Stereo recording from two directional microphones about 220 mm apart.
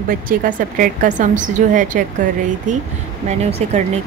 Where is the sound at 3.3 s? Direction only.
30° right (ahead or behind).